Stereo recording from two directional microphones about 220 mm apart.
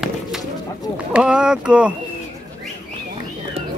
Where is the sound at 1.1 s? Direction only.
5° right (ahead or behind).